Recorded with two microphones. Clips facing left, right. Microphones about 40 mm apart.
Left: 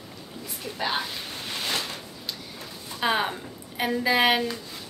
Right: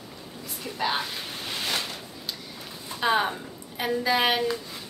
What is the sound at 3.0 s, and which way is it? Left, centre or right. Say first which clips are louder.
Speech: right 1 dB; centre.